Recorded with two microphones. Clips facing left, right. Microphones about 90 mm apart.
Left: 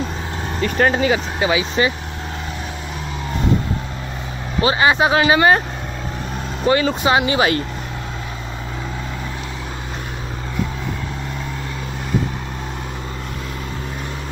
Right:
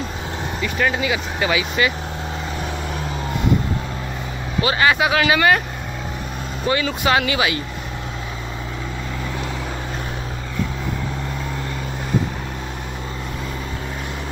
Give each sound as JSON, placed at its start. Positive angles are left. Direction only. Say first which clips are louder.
{"t": 0.6, "sound": "speech", "louder": "left 5 dB", "side_deg": 45}
{"t": 1.4, "sound": "speech", "louder": "even", "side_deg": 25}
{"t": 4.6, "sound": "speech", "louder": "left 2 dB", "side_deg": 25}
{"t": 6.7, "sound": "speech", "louder": "left 5 dB", "side_deg": 35}
{"t": 7.0, "sound": "speech", "louder": "left 2 dB", "side_deg": 20}
{"t": 7.3, "sound": "speech", "louder": "left 4 dB", "side_deg": 40}